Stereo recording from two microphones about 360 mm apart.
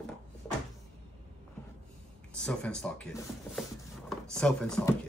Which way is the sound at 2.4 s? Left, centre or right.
Centre.